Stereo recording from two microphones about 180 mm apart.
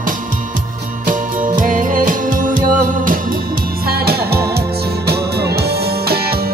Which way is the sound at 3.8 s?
60° right (ahead or behind).